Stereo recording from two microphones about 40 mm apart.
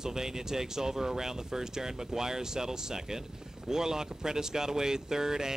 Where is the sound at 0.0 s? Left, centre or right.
Centre.